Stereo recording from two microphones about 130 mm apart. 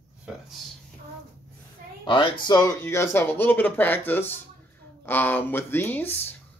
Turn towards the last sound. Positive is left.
turn(degrees=15)  # may be behind; listen again after turning